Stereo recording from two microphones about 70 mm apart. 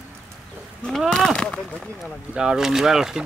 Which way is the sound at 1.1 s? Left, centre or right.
Centre.